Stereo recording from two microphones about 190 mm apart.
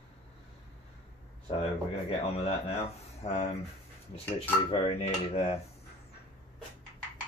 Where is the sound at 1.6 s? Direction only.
30° left (ahead or behind).